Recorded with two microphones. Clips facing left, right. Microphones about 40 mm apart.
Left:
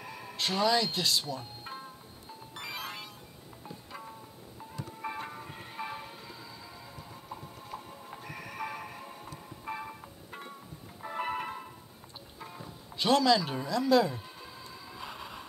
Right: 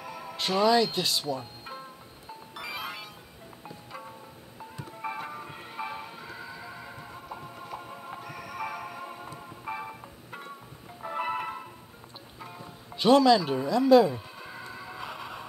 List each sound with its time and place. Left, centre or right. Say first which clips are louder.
0.0 s speech: right 2 dB; centre
2.6 s music: right 3 dB; centre
5.0 s music: right 4 dB; centre
6.2 s music: right 6 dB; right
7.2 s music: right 3 dB; right
8.2 s music: right 2 dB; centre
9.0 s music: right 5 dB; right
9.7 s music: right 2 dB; centre
12.4 s speech: right 2 dB; centre
14.4 s music: right 6 dB; right
15.0 s a sound: right 2 dB; right